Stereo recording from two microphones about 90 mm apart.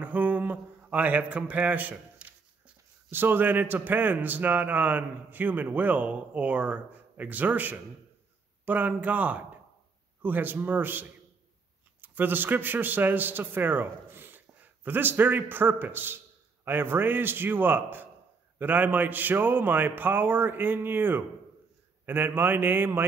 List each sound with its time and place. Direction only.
0.0 s mantra: 15° right (ahead or behind)
3.1 s a man's voice: 25° right (ahead or behind)